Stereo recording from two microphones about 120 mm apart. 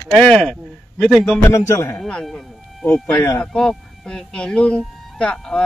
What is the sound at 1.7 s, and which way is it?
Speech, 25° left (ahead or behind).